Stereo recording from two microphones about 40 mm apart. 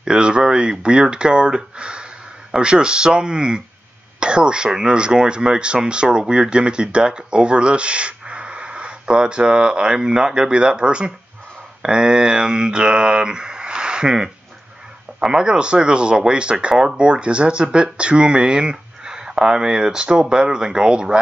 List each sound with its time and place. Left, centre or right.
0.0 s speech: right
11.8 s speech: centre
15.3 s speech: right